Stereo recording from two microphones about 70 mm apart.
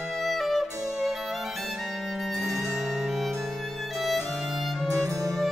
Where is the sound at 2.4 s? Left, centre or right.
Right.